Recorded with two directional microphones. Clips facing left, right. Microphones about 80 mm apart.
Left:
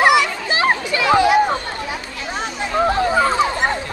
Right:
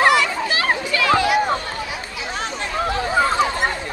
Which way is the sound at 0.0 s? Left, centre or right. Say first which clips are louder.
Left 2 dB; centre.